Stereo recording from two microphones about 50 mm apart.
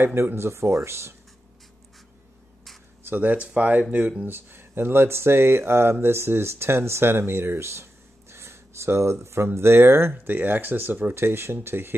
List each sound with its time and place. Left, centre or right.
0.0 s speech: right
3.1 s speech: right
4.3 s speech: right
11.2 s speech: right